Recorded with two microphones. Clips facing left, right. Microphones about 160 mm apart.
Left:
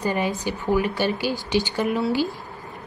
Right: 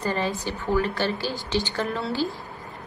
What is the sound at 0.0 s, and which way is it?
A woman's voice, 15° left (ahead or behind).